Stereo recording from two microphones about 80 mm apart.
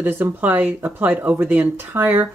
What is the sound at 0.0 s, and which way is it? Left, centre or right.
Speech, right.